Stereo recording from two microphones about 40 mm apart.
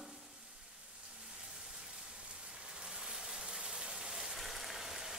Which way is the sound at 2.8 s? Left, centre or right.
Centre.